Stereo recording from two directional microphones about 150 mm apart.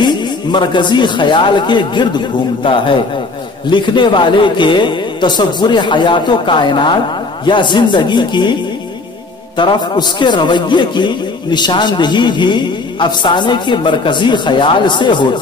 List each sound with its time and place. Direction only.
0.0 s a man's voice: 30° left (ahead or behind)
9.6 s a man's voice: 30° left (ahead or behind)